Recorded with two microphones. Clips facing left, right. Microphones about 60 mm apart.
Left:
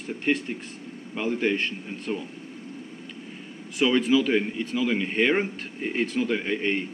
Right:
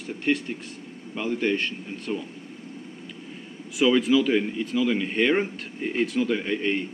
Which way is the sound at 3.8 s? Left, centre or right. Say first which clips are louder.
Right 1 dB; centre.